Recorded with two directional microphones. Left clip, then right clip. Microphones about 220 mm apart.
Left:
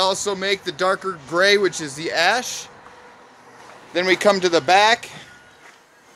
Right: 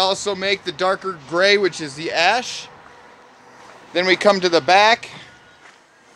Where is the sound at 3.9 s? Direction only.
15° right (ahead or behind).